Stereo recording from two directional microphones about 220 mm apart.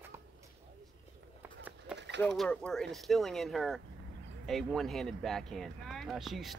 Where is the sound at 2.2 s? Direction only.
Centre (ahead or behind).